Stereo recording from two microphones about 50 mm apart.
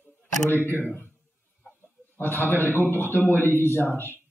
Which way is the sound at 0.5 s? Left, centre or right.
Left.